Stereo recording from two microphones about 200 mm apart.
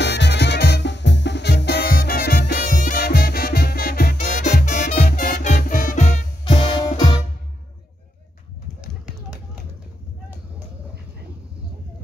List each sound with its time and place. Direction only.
0.0 s music: 60° left (ahead or behind); by 6.6 s 35° left (ahead or behind)
6.6 s music: 20° left (ahead or behind)